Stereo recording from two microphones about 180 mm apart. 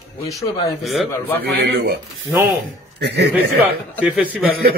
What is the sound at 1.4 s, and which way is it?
Speech, 65° right (ahead or behind).